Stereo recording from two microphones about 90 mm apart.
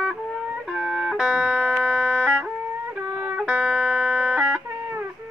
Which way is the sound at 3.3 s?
10° right (ahead or behind).